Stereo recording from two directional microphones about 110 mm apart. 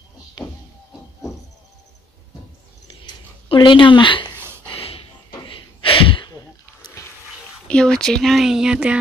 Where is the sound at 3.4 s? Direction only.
50° left (ahead or behind).